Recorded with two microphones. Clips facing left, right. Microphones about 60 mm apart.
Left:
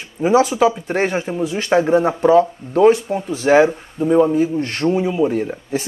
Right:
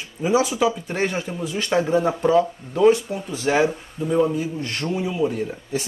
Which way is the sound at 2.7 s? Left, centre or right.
Left.